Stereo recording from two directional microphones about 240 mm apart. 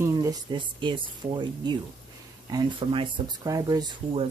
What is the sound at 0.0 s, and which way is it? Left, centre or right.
Speech, centre.